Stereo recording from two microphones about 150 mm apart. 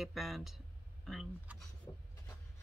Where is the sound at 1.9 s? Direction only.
25° left (ahead or behind).